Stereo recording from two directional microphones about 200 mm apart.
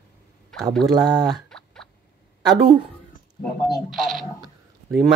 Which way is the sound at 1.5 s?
5° left (ahead or behind).